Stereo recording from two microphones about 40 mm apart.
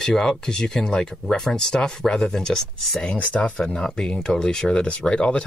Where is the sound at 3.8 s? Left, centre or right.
Centre.